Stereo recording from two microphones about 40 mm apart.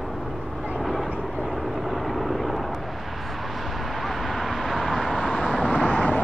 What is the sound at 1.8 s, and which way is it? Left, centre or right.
Vehicle, centre.